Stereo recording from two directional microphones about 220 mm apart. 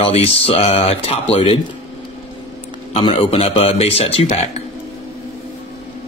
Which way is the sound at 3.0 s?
25° left (ahead or behind).